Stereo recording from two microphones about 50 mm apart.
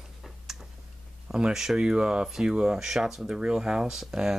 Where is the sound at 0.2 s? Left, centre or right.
Centre.